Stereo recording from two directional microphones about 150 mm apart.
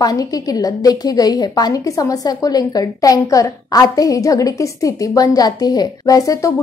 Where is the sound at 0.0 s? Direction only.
25° left (ahead or behind).